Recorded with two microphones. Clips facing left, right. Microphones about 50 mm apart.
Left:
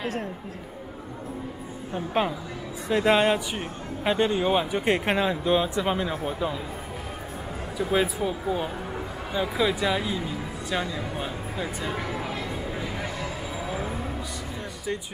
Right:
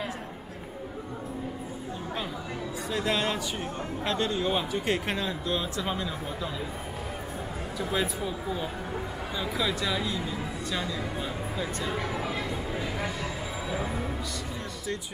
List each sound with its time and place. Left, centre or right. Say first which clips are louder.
2.2 s speech: left 11 dB; left
7.9 s speech: left 6 dB; left; by 12.3 s centre